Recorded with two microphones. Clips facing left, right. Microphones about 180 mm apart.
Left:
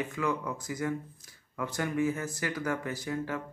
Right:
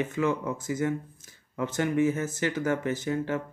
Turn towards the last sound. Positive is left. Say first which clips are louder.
# right 5 dB
turn(degrees=-25)  # may be behind; listen again after turning